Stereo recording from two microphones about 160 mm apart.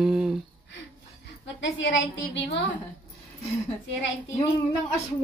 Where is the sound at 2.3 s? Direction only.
90° left.